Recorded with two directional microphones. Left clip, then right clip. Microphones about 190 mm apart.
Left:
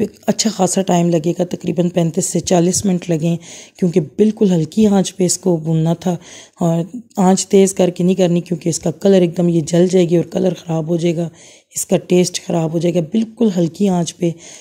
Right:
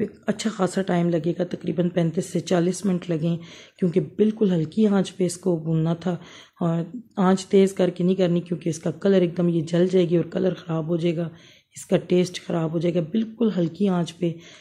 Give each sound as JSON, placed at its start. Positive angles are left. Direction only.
{"t": 0.0, "sound": "a woman's voice", "side_deg": 35}